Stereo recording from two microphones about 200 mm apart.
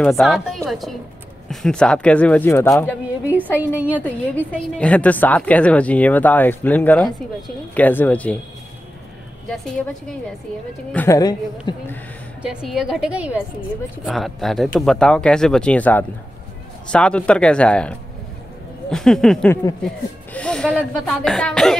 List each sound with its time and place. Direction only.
0.0 s a woman's voice: centre (ahead or behind)
3.5 s a woman's voice: 10° right (ahead or behind)
4.0 s a woman's voice: 5° left (ahead or behind)
10.9 s a woman's voice: 10° left (ahead or behind)
12.4 s speech: 5° right (ahead or behind)